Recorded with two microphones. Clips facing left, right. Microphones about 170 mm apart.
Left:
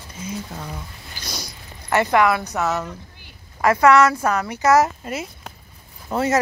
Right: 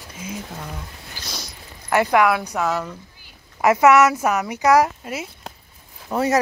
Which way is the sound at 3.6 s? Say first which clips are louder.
Right 1 dB; 20° right (ahead or behind).